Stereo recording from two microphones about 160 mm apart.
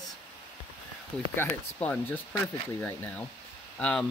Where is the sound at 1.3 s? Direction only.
10° left (ahead or behind).